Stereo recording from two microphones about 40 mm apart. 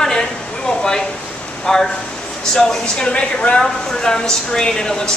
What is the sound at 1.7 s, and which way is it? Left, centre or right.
Speech, centre.